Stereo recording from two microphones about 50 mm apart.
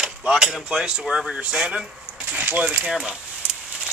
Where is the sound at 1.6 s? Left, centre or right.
Centre.